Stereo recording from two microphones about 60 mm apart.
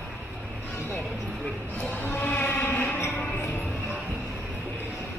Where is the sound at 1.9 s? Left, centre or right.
Left.